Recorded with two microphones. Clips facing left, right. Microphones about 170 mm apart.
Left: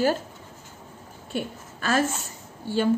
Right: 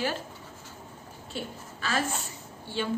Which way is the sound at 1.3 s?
50° left (ahead or behind).